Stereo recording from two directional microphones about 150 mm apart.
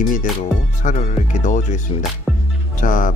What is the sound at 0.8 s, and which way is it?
Speech, 55° left (ahead or behind).